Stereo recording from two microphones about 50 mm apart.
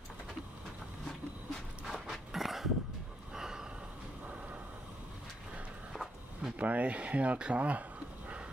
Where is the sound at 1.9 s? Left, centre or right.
Centre.